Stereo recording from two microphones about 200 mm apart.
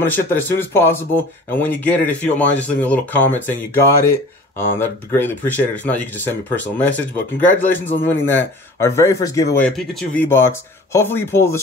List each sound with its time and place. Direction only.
0.0 s speech: 10° left (ahead or behind)